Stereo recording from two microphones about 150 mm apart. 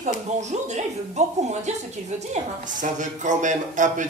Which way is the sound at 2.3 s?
55° right (ahead or behind).